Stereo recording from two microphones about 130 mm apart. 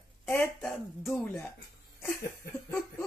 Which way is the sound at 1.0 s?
Centre (ahead or behind).